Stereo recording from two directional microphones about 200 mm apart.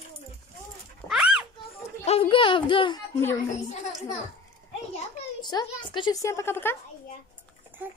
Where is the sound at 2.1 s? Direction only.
25° left (ahead or behind).